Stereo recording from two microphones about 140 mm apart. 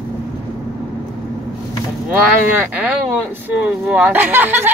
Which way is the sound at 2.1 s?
15° right (ahead or behind).